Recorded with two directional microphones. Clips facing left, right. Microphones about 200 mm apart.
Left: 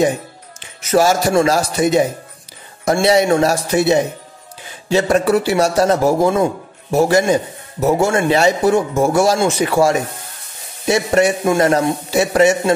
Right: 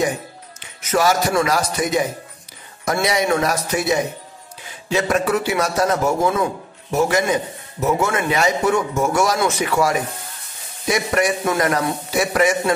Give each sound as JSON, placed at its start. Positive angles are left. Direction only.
{"t": 0.6, "sound": "a man's voice", "side_deg": 30}